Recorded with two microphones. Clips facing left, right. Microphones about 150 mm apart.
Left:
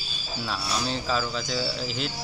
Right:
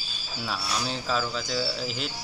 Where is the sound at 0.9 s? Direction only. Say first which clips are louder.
Left 1 dB; centre (ahead or behind).